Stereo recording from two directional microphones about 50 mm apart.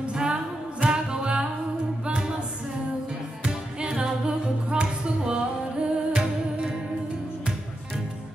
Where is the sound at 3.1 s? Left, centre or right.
Centre.